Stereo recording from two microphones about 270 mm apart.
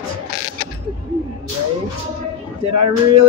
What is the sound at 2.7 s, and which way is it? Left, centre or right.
Speech, right.